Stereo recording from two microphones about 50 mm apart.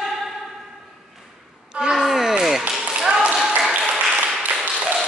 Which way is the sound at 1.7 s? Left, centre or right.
Centre.